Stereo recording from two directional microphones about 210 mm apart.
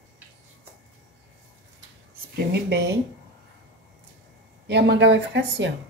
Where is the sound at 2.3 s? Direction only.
50° right (ahead or behind).